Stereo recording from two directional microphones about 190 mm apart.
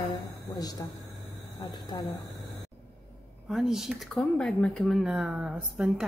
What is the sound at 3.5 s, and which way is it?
Speech, centre (ahead or behind).